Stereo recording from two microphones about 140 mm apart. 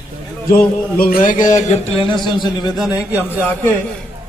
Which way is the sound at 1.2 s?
65° left (ahead or behind).